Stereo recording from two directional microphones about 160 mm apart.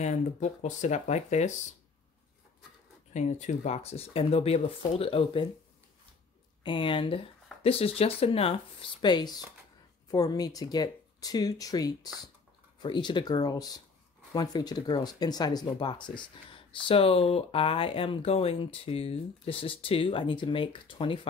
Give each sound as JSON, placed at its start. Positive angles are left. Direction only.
{"t": 0.0, "sound": "speech", "side_deg": 50}
{"t": 3.1, "sound": "speech", "side_deg": 45}
{"t": 6.6, "sound": "speech", "side_deg": 30}
{"t": 9.0, "sound": "speech", "side_deg": 25}